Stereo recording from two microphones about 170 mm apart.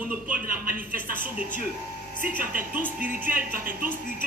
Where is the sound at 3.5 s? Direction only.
55° right (ahead or behind).